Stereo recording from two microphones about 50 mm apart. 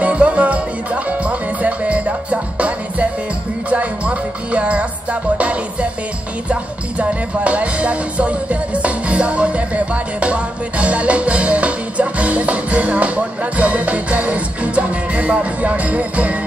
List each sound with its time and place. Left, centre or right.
0.0 s music: right